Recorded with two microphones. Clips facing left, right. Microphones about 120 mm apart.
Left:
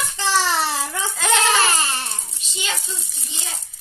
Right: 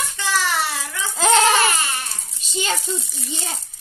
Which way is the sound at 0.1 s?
30° left (ahead or behind).